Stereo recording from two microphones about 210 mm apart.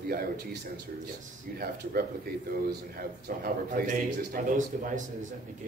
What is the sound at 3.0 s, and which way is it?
A man's voice, 45° right (ahead or behind).